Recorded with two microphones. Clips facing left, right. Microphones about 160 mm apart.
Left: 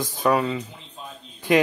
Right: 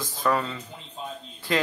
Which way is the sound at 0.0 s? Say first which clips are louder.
Left 4 dB; 15° left (ahead or behind).